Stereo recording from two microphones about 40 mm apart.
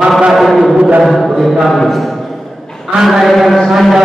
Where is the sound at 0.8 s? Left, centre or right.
Right.